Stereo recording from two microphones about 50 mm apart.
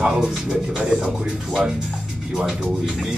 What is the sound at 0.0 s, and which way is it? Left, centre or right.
Speech, centre.